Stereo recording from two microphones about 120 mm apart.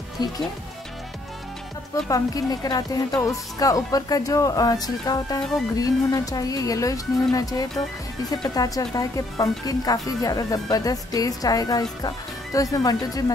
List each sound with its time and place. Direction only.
0.2 s speech: 35° left (ahead or behind)
2.0 s speech: 30° left (ahead or behind)